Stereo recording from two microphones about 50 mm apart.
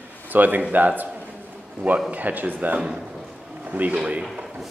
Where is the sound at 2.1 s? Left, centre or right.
Right.